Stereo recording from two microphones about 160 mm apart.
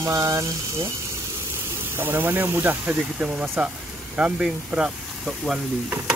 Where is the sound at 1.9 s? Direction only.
15° right (ahead or behind).